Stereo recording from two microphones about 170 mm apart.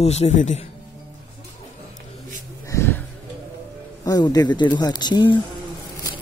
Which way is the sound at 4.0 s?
20° left (ahead or behind).